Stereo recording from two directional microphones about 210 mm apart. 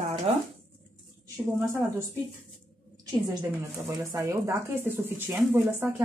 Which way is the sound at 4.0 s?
15° right (ahead or behind).